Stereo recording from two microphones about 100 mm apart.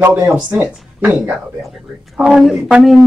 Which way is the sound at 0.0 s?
20° right (ahead or behind).